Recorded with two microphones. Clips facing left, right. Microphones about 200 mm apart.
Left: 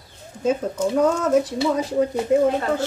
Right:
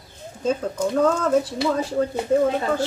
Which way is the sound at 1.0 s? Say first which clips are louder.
Left 1 dB; 20° left (ahead or behind).